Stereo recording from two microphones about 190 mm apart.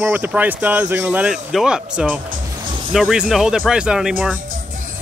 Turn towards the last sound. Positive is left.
turn(degrees=-5)  # may be behind; listen again after turning